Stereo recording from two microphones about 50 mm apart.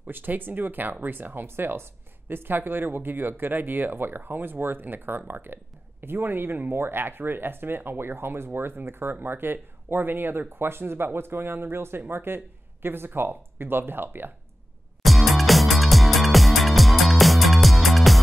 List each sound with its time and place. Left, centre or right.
0.0 s speech: right
15.0 s music: centre